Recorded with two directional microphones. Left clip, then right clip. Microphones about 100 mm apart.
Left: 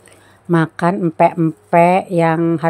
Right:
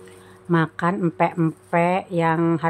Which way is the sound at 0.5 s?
50° left (ahead or behind).